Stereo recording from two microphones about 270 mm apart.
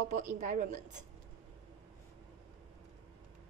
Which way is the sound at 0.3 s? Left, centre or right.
Right.